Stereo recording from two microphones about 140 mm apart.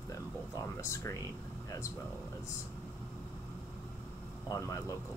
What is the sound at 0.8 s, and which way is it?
Speech, 20° left (ahead or behind).